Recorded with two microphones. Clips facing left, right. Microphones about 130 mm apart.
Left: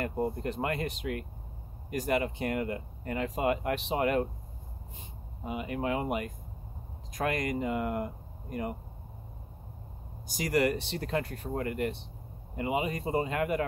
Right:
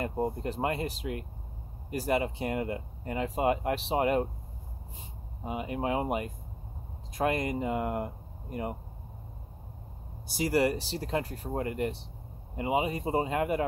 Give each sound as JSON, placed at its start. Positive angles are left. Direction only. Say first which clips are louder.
{"t": 0.0, "sound": "speech", "louder": "even", "side_deg": -25}
{"t": 5.4, "sound": "speech", "louder": "right 1 dB", "side_deg": -30}
{"t": 10.2, "sound": "speech", "louder": "right 1 dB", "side_deg": -30}